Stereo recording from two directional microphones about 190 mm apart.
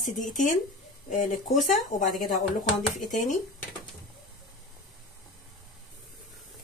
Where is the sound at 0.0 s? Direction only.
40° left (ahead or behind).